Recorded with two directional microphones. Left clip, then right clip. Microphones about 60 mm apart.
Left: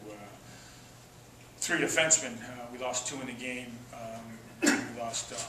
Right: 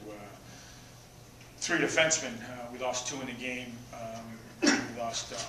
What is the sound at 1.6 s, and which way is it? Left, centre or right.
Speech, centre.